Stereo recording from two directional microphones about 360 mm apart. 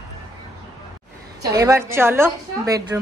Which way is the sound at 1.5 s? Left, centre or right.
Centre.